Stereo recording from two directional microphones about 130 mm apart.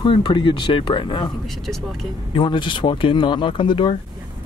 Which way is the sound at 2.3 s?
40° left (ahead or behind).